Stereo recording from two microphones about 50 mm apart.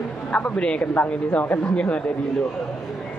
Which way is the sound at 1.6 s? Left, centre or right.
Left.